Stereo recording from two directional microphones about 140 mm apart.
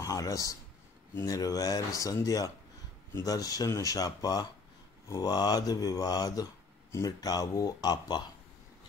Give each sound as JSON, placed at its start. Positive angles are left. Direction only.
{"t": 0.0, "sound": "speech", "side_deg": 25}